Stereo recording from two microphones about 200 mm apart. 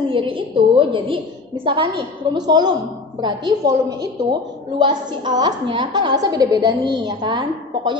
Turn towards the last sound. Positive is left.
turn(degrees=-20)  # may be behind; listen again after turning